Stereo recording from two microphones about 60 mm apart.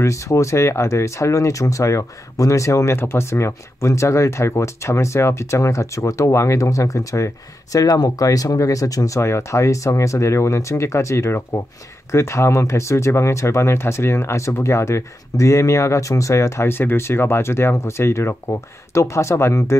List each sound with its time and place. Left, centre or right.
0.0 s speech: left
7.7 s speech: left
9.2 s speech: left